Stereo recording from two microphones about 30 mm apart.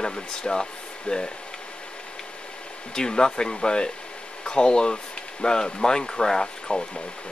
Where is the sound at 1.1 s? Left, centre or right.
Left.